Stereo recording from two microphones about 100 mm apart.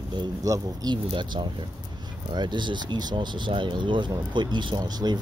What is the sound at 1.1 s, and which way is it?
Speech, 50° right (ahead or behind).